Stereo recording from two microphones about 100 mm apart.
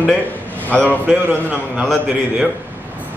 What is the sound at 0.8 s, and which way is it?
Speech, 15° right (ahead or behind).